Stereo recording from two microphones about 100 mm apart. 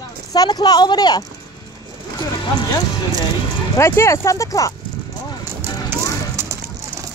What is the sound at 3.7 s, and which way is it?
Speech, 30° left (ahead or behind).